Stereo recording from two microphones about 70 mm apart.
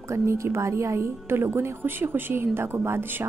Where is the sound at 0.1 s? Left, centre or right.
Right.